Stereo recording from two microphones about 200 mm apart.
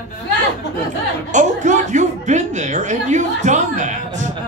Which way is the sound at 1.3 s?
35° right (ahead or behind).